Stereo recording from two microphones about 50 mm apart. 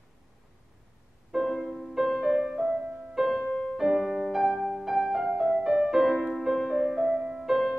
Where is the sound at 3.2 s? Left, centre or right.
Centre.